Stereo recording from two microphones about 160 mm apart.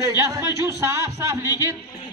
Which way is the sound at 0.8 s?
20° right (ahead or behind).